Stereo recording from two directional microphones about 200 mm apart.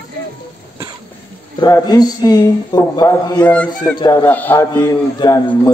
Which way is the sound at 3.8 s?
20° left (ahead or behind).